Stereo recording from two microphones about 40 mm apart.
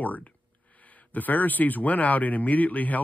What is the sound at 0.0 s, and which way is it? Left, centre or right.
Speech, left.